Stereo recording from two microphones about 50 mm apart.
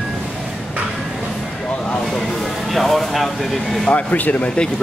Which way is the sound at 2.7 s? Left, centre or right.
Centre.